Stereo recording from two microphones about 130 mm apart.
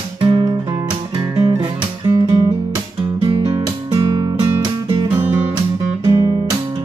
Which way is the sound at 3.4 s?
30° right (ahead or behind).